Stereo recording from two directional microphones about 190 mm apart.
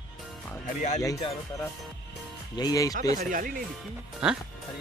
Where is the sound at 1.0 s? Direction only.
20° left (ahead or behind).